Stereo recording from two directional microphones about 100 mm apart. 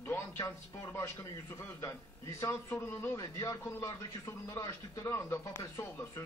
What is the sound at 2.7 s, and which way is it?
A man's voice, 20° left (ahead or behind).